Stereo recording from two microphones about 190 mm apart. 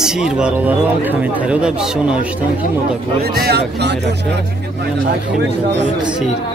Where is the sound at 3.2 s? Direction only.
55° right (ahead or behind).